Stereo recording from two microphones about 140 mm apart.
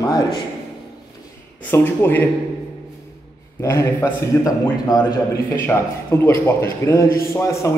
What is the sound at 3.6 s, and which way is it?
A man's voice, 20° left (ahead or behind).